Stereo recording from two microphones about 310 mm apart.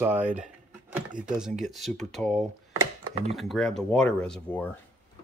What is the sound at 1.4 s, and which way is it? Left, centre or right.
Speech, centre.